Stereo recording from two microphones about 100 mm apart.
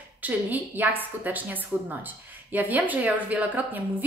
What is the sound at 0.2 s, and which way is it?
A woman's voice, 15° right (ahead or behind).